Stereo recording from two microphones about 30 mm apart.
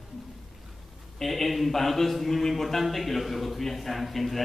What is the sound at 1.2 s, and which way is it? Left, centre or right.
A man's voice, centre.